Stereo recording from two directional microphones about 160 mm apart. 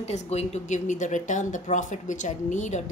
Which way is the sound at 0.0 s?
40° left (ahead or behind).